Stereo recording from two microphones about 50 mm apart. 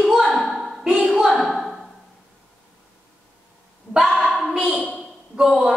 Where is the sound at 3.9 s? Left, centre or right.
Centre.